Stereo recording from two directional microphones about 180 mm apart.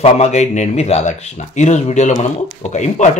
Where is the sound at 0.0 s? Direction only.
40° left (ahead or behind).